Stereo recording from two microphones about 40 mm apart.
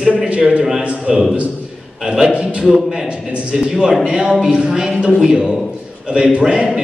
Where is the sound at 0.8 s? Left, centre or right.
Right.